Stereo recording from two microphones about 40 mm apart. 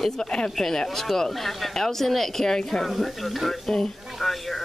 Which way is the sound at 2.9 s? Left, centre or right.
Centre.